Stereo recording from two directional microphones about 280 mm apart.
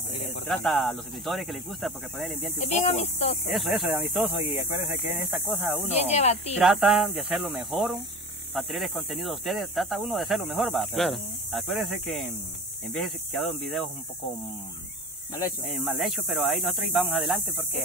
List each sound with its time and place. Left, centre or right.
0.5 s speech: centre
2.6 s speech: left
3.4 s speech: centre
5.9 s speech: left
6.6 s speech: centre
15.6 s speech: centre